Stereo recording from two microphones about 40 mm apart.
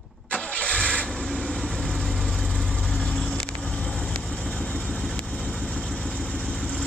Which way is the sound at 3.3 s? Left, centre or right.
Left.